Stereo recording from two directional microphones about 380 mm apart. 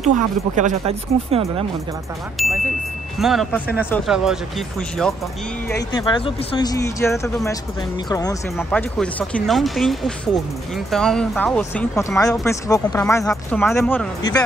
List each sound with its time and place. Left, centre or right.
0.6 s speech: centre
2.4 s speech: centre
5.9 s speech: centre